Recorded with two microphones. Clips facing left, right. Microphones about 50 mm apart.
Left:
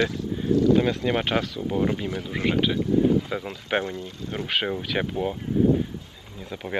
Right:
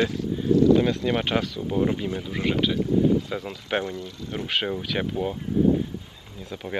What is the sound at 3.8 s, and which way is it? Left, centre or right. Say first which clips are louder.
Speech: even; left.